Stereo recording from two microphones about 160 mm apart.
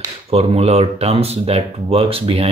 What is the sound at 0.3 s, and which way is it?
Speech, 40° right (ahead or behind).